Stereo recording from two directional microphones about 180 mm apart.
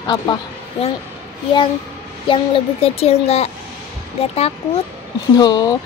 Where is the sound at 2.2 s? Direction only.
30° left (ahead or behind).